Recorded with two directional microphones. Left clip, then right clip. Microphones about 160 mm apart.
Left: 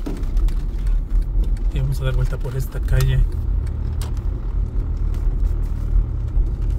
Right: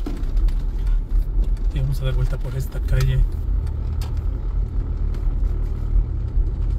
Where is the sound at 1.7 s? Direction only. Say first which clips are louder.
Left 2 dB; 30° left (ahead or behind).